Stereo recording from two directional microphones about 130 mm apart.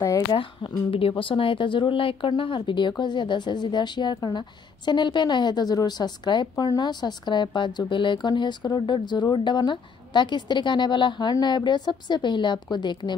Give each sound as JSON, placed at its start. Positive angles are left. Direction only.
{"t": 0.3, "sound": "a woman's voice", "side_deg": 35}